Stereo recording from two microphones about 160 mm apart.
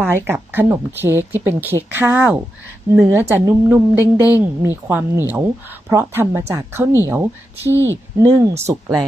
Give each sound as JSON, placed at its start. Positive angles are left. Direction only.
{"t": 0.0, "sound": "speech", "side_deg": -15}